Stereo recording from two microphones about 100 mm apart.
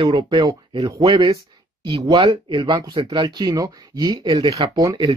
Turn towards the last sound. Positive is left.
turn(degrees=-35)  # may be behind; listen again after turning